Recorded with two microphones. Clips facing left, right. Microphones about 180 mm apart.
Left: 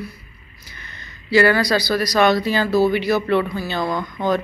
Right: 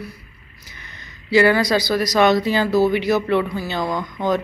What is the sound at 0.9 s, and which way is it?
Speech, 20° right (ahead or behind).